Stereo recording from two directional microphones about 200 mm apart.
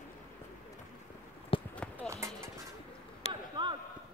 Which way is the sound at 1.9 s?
15° right (ahead or behind).